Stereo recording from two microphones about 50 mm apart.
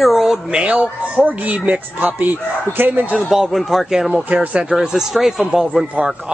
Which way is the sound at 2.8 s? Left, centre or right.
Right.